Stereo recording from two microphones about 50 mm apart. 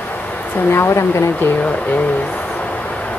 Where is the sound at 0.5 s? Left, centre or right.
Left.